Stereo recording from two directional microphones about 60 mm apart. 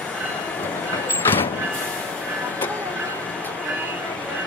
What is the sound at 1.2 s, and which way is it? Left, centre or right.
Vehicle, left.